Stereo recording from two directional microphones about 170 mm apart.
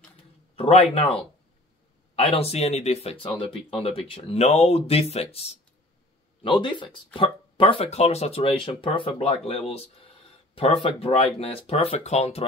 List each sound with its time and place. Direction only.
0.6 s speech: 35° left (ahead or behind)
2.1 s speech: 35° left (ahead or behind)